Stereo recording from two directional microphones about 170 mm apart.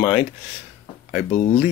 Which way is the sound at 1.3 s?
40° left (ahead or behind).